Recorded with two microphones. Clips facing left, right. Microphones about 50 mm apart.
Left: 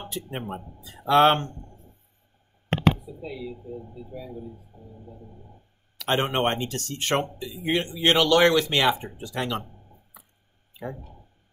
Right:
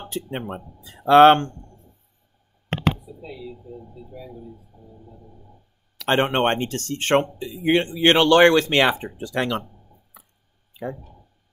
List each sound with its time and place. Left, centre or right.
0.1 s speech: right
3.7 s speech: left
6.0 s speech: right